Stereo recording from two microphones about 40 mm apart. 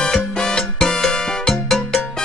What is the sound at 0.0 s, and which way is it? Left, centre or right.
Music, centre.